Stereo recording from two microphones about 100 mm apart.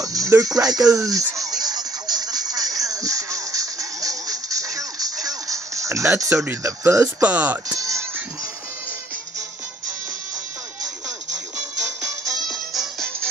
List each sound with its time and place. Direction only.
0.0 s music: 35° right (ahead or behind)
6.6 s speech: 30° right (ahead or behind)
7.2 s speech: 15° right (ahead or behind)
7.7 s music: 35° right (ahead or behind)
12.4 s music: centre (ahead or behind)